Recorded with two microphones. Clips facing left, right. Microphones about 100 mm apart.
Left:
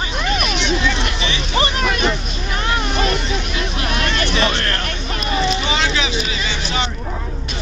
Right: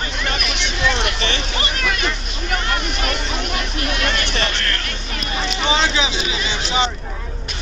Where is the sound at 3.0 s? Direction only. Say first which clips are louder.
Left 3 dB; 50° right (ahead or behind).